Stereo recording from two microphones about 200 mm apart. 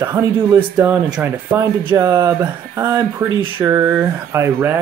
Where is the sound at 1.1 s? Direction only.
10° right (ahead or behind).